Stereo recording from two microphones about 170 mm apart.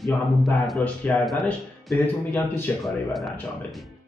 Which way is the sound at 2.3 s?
15° left (ahead or behind).